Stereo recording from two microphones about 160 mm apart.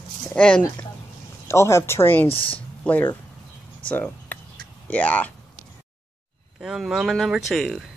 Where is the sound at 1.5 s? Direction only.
15° left (ahead or behind).